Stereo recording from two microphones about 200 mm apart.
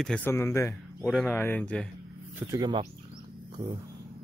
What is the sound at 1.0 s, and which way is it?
Speech, centre (ahead or behind).